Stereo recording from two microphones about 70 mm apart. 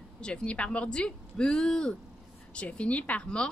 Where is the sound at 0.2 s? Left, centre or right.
Centre.